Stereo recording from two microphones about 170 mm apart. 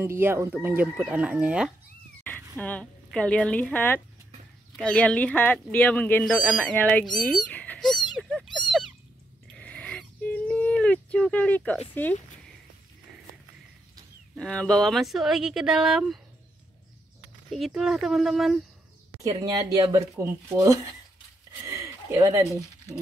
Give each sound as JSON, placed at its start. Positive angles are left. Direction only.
{"t": 0.0, "sound": "speech", "side_deg": -15}
{"t": 2.5, "sound": "speech", "side_deg": 5}
{"t": 7.2, "sound": "cat", "side_deg": 5}
{"t": 9.5, "sound": "a sound", "side_deg": 5}
{"t": 11.9, "sound": "speech", "side_deg": 10}
{"t": 14.3, "sound": "speech", "side_deg": 5}
{"t": 17.5, "sound": "speech", "side_deg": 0}
{"t": 19.2, "sound": "speech", "side_deg": -20}
{"t": 21.6, "sound": "a sound", "side_deg": -15}